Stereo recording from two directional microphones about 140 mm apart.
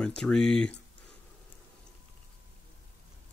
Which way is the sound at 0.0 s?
5° left (ahead or behind).